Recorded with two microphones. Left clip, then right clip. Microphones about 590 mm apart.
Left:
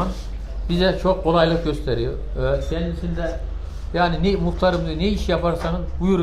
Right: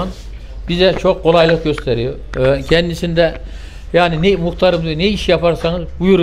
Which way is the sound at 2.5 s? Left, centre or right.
Right.